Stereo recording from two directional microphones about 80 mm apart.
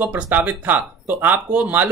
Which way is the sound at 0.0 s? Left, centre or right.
Right.